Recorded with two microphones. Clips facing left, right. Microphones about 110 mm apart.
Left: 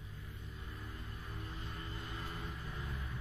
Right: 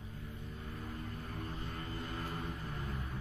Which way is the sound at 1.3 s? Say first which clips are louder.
Right 3 dB; 55° right (ahead or behind).